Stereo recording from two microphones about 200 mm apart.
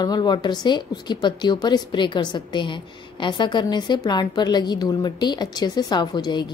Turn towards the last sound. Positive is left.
turn(degrees=20)  # may be behind; listen again after turning